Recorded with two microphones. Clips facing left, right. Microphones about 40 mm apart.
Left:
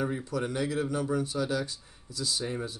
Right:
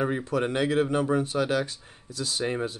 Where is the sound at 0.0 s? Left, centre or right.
Right.